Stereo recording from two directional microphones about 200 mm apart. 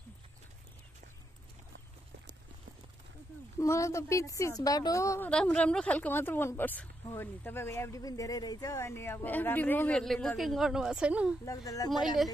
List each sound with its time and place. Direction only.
3.5 s a woman's voice: 15° left (ahead or behind); by 11.3 s 5° right (ahead or behind)
11.4 s a woman's voice: 15° left (ahead or behind)